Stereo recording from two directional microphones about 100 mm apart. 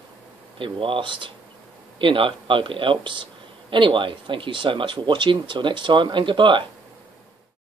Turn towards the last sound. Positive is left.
turn(degrees=-55)  # may be behind; listen again after turning